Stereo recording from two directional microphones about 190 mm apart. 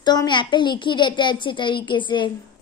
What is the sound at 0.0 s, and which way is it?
A child's voice, 20° left (ahead or behind).